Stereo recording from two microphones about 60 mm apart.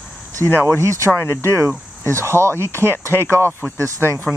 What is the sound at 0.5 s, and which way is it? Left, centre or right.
Speech, right.